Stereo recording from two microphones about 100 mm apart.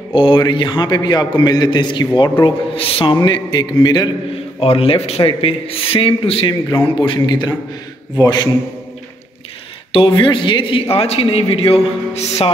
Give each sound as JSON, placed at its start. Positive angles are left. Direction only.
{"t": 0.1, "sound": "a man's voice", "side_deg": 55}
{"t": 2.4, "sound": "a man's voice", "side_deg": 65}
{"t": 3.2, "sound": "a man's voice", "side_deg": 50}
{"t": 4.6, "sound": "a man's voice", "side_deg": 75}
{"t": 7.2, "sound": "a man's voice", "side_deg": 50}
{"t": 9.9, "sound": "a man's voice", "side_deg": 55}
{"t": 11.0, "sound": "a man's voice", "side_deg": 75}